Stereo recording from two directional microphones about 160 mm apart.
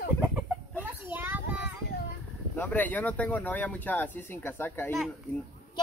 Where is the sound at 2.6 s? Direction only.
10° left (ahead or behind).